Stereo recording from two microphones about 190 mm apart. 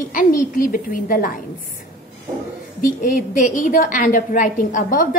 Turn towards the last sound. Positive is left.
turn(degrees=45)  # may be behind; listen again after turning